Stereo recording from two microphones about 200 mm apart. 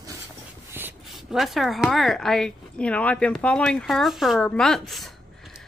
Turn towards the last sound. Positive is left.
turn(degrees=0)  # may be behind; listen again after turning